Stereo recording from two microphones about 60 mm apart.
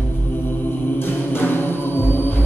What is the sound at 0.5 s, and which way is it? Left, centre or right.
Music, left.